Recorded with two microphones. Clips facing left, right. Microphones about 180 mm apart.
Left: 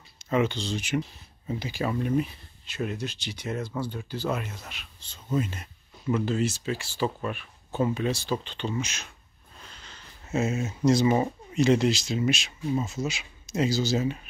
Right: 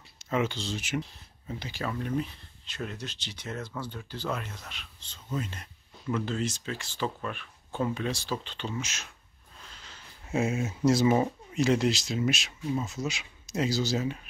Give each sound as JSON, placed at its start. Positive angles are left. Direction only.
{"t": 0.2, "sound": "speech", "side_deg": 0}
{"t": 1.5, "sound": "speech", "side_deg": 10}
{"t": 9.7, "sound": "a sound", "side_deg": 0}
{"t": 10.2, "sound": "speech", "side_deg": -10}